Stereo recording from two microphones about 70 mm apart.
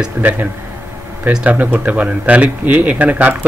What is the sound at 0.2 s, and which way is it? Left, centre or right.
Speech, right.